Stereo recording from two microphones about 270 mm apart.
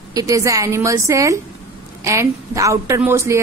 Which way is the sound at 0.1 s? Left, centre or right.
Centre.